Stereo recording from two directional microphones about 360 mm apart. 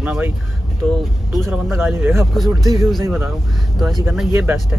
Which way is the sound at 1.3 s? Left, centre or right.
Centre.